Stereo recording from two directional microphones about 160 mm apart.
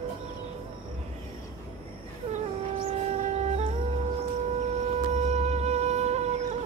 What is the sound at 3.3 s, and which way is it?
Music, 45° right (ahead or behind).